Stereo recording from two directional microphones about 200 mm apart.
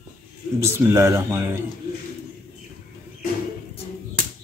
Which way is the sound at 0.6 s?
15° right (ahead or behind).